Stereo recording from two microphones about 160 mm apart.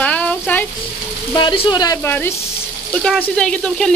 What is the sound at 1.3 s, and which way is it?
Speech, 30° left (ahead or behind).